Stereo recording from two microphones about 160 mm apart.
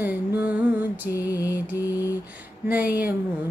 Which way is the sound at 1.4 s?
10° right (ahead or behind).